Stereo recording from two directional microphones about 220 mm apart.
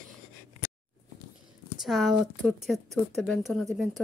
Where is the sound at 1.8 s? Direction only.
Centre (ahead or behind).